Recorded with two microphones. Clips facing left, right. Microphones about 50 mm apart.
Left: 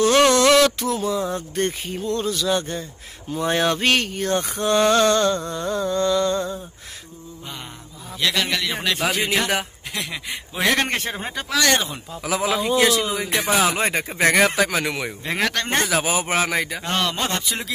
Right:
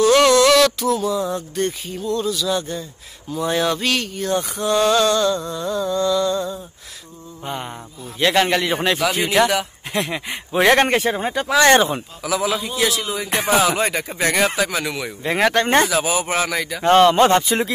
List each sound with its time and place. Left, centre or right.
0.0 s speech: left
8.2 s speech: right
9.9 s speech: right
10.9 s speech: centre
11.5 s speech: right
12.2 s speech: left
13.7 s speech: left
15.2 s speech: centre
15.5 s speech: right
15.9 s speech: left
16.8 s speech: right